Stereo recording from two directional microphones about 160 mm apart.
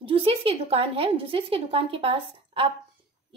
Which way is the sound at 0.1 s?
35° right (ahead or behind).